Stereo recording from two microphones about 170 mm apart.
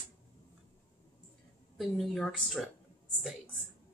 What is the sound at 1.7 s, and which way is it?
Speech, centre (ahead or behind).